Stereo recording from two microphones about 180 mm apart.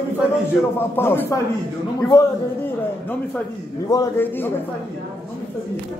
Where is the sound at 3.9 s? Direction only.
15° left (ahead or behind).